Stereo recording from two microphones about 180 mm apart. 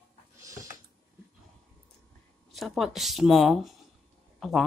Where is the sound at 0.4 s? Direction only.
20° right (ahead or behind).